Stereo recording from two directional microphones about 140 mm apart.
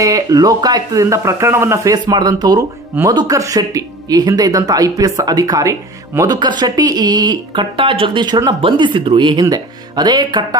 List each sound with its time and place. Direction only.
0.0 s speech: 25° right (ahead or behind)